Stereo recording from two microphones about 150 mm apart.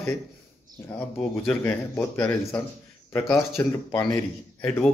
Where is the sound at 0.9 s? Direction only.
10° left (ahead or behind).